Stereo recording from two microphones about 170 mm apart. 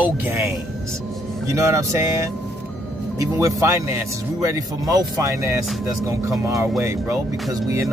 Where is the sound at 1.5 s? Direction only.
15° right (ahead or behind).